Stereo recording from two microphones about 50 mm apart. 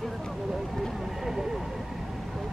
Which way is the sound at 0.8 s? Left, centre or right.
Centre.